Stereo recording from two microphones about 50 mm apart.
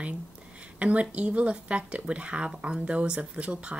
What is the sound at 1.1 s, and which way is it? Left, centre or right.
A woman's voice, right.